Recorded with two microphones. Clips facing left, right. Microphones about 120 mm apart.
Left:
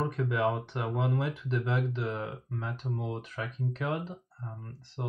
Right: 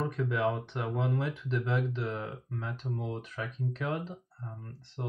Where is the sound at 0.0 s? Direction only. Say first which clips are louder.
Left 1 dB; 5° left (ahead or behind).